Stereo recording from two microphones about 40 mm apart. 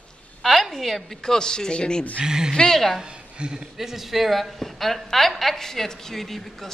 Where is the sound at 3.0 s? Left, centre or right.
Right.